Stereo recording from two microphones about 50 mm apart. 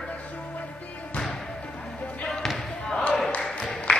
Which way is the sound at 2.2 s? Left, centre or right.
Centre.